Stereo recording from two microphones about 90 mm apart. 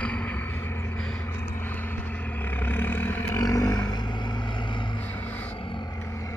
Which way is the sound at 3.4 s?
40° left (ahead or behind).